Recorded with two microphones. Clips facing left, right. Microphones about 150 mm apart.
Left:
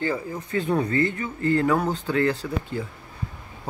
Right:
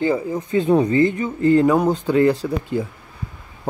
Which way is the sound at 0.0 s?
20° right (ahead or behind).